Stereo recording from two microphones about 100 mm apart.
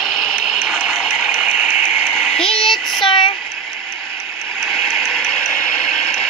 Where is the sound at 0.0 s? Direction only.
5° left (ahead or behind).